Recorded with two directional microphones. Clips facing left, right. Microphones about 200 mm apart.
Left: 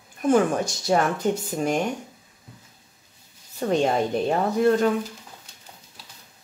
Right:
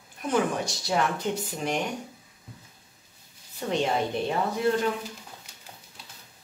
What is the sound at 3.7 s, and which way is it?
Speech, 45° left (ahead or behind).